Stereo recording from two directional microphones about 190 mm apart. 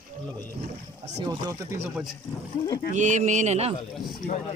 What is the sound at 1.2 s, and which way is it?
Speech, 25° right (ahead or behind).